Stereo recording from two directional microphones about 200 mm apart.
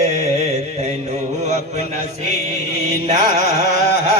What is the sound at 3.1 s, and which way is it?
Carnatic music, 50° left (ahead or behind).